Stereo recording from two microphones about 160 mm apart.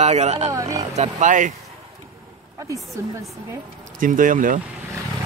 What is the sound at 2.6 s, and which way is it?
Speech, 20° right (ahead or behind).